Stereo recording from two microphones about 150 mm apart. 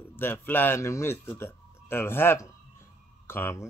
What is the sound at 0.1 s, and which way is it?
A man's voice, 15° left (ahead or behind).